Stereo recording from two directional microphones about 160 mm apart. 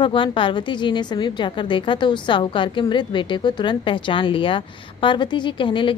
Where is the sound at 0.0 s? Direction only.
30° left (ahead or behind).